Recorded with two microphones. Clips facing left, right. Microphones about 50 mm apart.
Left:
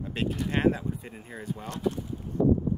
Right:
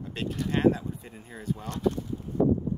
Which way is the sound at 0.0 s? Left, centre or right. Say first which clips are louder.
Left 2 dB; centre.